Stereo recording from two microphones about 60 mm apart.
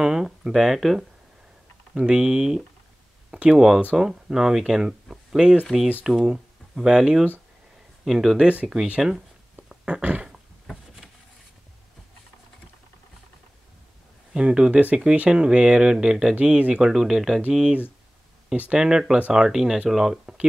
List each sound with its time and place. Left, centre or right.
0.0 s speech: centre
8.7 s speech: centre
9.7 s dog: centre
14.3 s speech: centre
16.3 s speech: right